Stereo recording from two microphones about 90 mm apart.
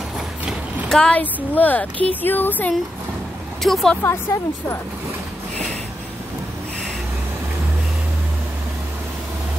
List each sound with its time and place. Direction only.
0.8 s a woman's voice: 10° left (ahead or behind)
3.6 s speech: centre (ahead or behind)
4.0 s a woman's voice: 30° left (ahead or behind)